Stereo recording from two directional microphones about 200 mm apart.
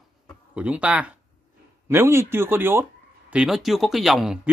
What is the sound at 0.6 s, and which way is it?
Speech, 5° right (ahead or behind).